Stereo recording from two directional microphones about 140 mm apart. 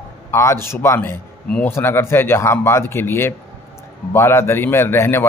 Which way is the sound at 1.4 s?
5° left (ahead or behind).